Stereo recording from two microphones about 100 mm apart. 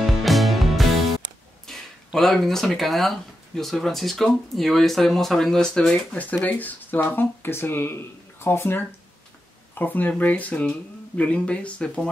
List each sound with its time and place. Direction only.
0.0 s music: centre (ahead or behind)
1.7 s a sound: 5° left (ahead or behind)
2.1 s speech: centre (ahead or behind)